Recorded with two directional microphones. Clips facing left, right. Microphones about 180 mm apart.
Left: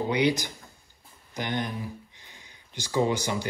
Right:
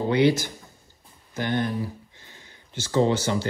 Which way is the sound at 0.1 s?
15° left (ahead or behind).